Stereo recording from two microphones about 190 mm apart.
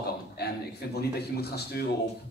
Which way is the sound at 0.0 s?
60° left (ahead or behind).